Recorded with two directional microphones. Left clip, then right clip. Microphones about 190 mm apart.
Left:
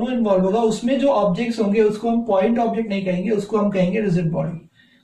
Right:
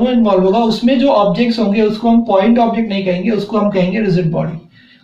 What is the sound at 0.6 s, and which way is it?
Speech, 15° right (ahead or behind).